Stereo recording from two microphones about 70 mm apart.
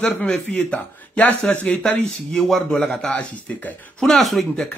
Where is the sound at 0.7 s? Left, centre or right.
Left.